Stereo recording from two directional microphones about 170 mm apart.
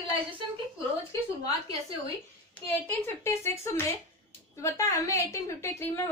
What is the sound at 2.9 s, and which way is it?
A woman's voice, 15° left (ahead or behind).